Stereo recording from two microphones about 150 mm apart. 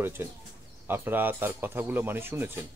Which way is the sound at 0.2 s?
15° right (ahead or behind).